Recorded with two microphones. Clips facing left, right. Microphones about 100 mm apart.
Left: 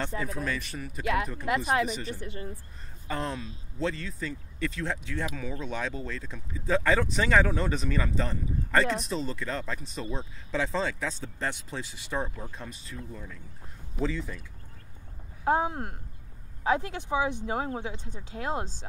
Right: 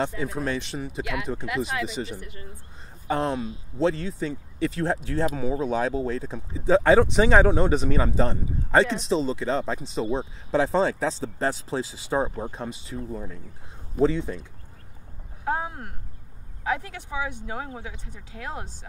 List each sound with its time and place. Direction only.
0.2 s speech: 30° right (ahead or behind)
1.0 s speech: 35° left (ahead or behind)
3.1 s speech: 30° right (ahead or behind)
15.4 s speech: 30° left (ahead or behind)